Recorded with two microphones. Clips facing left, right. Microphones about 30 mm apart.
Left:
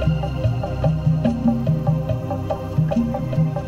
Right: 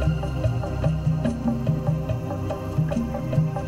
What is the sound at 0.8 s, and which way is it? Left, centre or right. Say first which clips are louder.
Music: left 5 dB; centre.